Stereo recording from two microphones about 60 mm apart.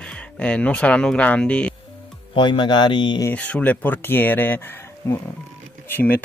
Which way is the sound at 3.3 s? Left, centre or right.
Left.